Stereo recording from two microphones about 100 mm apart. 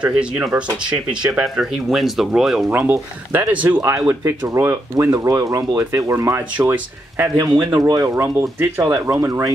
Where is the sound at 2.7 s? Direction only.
20° right (ahead or behind).